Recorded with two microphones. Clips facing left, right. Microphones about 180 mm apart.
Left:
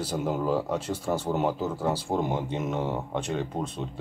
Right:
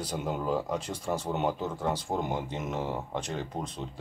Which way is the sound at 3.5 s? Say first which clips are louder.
Left 4 dB; 25° left (ahead or behind).